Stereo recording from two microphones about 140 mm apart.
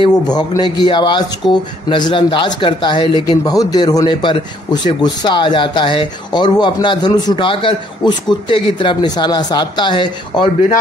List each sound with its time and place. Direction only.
0.3 s speech: 30° left (ahead or behind)